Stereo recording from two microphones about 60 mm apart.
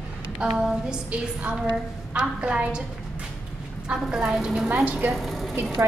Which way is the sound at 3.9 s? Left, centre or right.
Centre.